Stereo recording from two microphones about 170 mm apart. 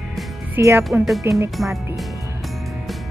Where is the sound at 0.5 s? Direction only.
15° right (ahead or behind).